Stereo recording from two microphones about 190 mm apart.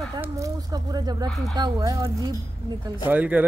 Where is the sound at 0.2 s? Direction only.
15° right (ahead or behind).